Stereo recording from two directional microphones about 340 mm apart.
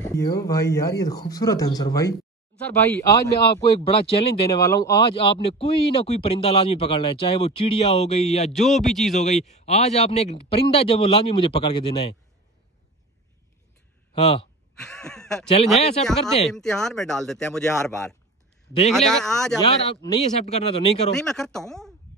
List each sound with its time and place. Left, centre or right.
0.0 s speech: centre
8.5 s speech: centre
9.2 s speech: centre
14.2 s speech: centre
14.8 s a sound: centre
16.0 s speech: centre
19.6 s speech: centre
21.1 s speech: centre